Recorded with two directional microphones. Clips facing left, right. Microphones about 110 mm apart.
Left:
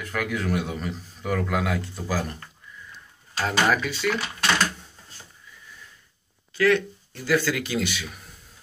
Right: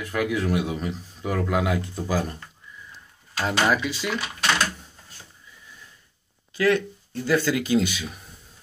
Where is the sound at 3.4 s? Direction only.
15° right (ahead or behind).